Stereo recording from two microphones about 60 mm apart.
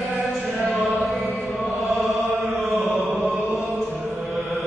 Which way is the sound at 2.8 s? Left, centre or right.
Right.